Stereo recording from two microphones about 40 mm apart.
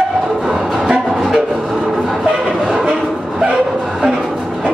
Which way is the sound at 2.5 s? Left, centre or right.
Right.